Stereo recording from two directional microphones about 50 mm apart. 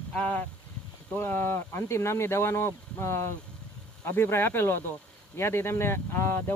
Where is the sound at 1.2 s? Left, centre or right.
Left.